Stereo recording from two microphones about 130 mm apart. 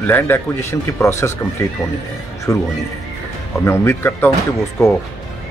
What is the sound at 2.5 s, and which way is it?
Speech, 25° left (ahead or behind).